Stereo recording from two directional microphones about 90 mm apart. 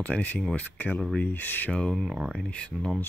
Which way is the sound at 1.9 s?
5° right (ahead or behind).